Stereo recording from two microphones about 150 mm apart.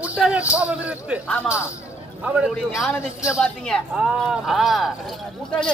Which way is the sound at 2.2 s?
10° right (ahead or behind).